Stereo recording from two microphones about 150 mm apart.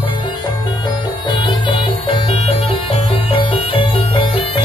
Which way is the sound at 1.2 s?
30° left (ahead or behind).